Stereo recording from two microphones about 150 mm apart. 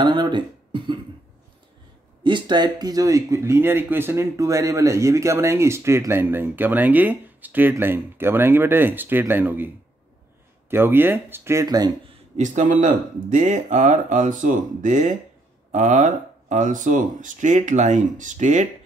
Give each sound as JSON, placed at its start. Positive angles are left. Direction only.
{"t": 0.0, "sound": "speech", "side_deg": -30}
{"t": 2.2, "sound": "speech", "side_deg": -30}
{"t": 10.7, "sound": "speech", "side_deg": -15}
{"t": 12.4, "sound": "speech", "side_deg": -55}